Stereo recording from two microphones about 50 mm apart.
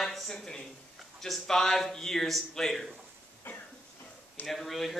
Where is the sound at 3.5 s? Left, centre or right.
Left.